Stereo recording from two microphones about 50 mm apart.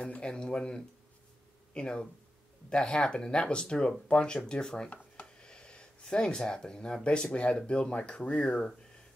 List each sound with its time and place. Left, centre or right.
0.0 s speech: left
4.8 s speech: left
5.2 s a sound: centre
7.3 s speech: left